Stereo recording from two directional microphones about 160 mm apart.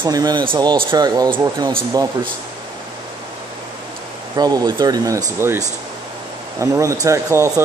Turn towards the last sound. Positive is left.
turn(degrees=-20)  # may be behind; listen again after turning